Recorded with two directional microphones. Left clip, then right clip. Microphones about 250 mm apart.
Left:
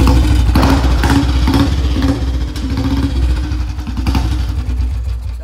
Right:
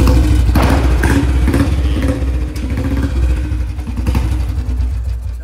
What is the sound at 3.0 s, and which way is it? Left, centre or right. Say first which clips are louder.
Vehicle: left 2 dB; centre.